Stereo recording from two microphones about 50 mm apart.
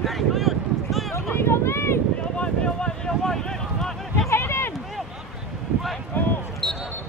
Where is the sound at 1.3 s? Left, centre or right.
Left.